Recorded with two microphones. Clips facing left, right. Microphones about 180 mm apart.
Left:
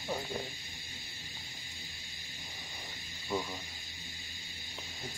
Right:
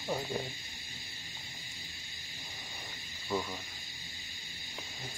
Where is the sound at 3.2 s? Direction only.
5° left (ahead or behind).